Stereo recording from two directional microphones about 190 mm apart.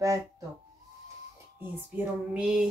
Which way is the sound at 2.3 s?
5° right (ahead or behind).